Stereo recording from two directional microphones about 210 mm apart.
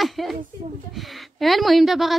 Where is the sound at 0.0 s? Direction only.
Centre (ahead or behind).